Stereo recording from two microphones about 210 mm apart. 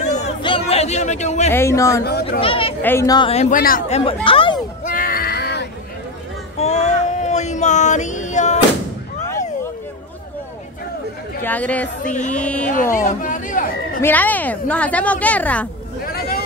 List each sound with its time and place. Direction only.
0.0 s a sound: 30° left (ahead or behind)
1.5 s a woman's voice: 15° left (ahead or behind)
2.4 s speech: 25° left (ahead or behind)
2.8 s speech: 10° left (ahead or behind); by 4.0 s 40° left (ahead or behind)
4.0 s speech: 25° left (ahead or behind)
4.8 s a sound: 40° left (ahead or behind)
6.6 s a sound: 30° left (ahead or behind)
11.4 s a woman's voice: 5° left (ahead or behind)
12.7 s chatter: 40° left (ahead or behind)
14.0 s a woman's voice: 10° left (ahead or behind)
16.1 s vehicle: 45° left (ahead or behind)